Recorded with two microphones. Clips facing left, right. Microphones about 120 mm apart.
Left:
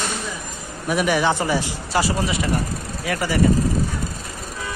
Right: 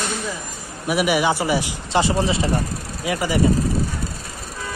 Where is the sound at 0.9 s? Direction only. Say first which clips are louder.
Right 1 dB; 10° right (ahead or behind); by 2.4 s 30° right (ahead or behind).